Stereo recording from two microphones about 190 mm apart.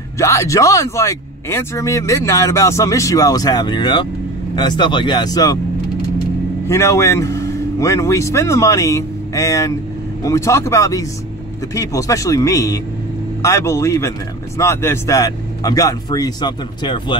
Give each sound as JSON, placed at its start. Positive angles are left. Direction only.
{"t": 0.2, "sound": "a man's voice", "side_deg": 15}
{"t": 6.7, "sound": "a man's voice", "side_deg": 15}